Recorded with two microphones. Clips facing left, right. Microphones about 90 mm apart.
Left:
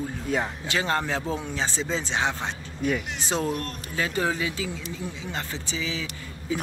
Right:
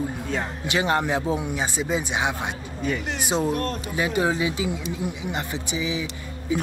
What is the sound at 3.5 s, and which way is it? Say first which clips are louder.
Speech: right 5 dB; 40° right (ahead or behind).